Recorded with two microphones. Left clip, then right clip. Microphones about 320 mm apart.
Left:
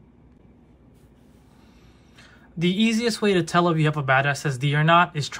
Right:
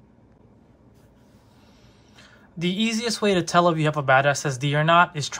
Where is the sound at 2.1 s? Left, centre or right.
Centre.